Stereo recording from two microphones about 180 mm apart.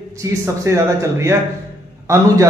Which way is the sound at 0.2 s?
15° right (ahead or behind).